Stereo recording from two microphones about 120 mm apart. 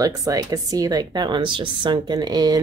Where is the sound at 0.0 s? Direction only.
30° right (ahead or behind).